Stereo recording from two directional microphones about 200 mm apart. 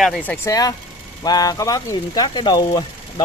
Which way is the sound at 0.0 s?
Centre (ahead or behind).